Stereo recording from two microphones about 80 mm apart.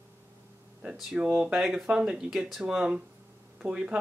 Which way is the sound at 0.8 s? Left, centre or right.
Centre.